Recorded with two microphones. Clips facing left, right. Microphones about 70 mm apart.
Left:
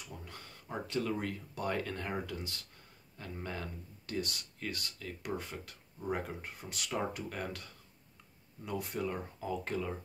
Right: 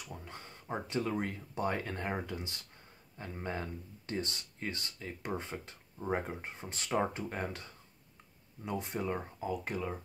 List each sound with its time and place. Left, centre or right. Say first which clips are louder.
0.0 s speech: right 2 dB; right
9.5 s speech: even; centre